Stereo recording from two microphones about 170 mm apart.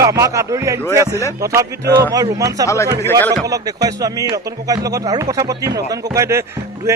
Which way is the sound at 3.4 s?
20° right (ahead or behind).